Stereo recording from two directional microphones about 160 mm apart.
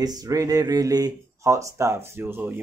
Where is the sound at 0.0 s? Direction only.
25° right (ahead or behind).